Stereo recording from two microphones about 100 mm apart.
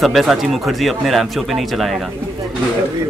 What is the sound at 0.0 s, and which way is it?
A man's voice, centre (ahead or behind).